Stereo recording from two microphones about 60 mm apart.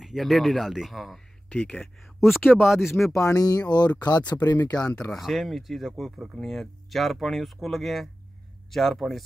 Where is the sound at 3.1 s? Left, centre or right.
Left.